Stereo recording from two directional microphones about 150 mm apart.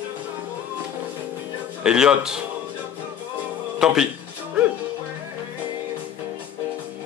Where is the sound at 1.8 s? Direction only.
5° right (ahead or behind).